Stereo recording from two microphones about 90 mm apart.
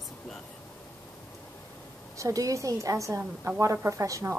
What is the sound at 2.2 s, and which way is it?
A woman's voice, 40° right (ahead or behind).